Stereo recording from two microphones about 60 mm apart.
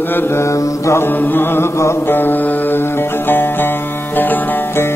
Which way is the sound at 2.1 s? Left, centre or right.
Left.